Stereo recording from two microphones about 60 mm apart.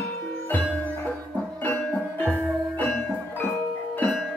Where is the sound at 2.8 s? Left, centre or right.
Centre.